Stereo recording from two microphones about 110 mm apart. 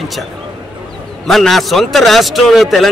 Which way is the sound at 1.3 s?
Centre (ahead or behind).